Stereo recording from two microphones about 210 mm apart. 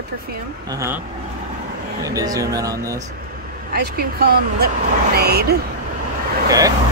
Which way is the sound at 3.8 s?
45° right (ahead or behind).